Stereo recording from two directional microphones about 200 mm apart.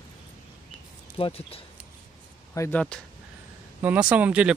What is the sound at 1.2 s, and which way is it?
Speech, 30° left (ahead or behind).